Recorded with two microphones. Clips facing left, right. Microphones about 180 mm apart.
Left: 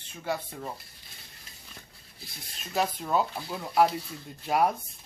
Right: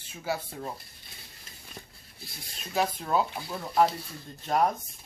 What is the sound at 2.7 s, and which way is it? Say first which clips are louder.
A man's voice: even; centre (ahead or behind).